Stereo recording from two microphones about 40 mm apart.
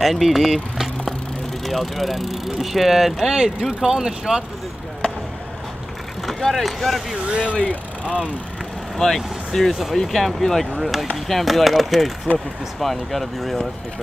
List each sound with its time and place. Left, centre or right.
0.0 s speech: centre
6.2 s speech: centre
7.2 s speech: right
8.9 s speech: centre